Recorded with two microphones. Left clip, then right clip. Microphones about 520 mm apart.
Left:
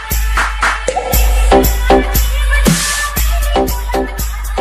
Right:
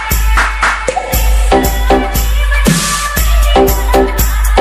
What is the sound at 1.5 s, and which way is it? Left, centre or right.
Music, left.